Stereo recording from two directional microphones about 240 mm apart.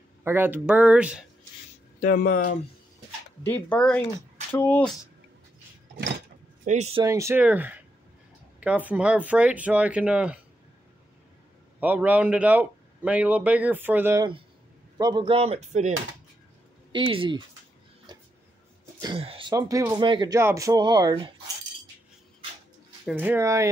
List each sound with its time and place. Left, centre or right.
0.2 s speech: centre
2.0 s speech: left
3.4 s speech: centre
6.6 s speech: right
7.1 s speech: centre
11.8 s speech: centre; by 15.9 s right
16.9 s speech: right
18.1 s a sound: centre
18.9 s speech: right
23.0 s speech: centre